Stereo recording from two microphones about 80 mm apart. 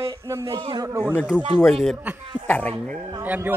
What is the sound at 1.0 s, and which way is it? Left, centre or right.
Speech, centre.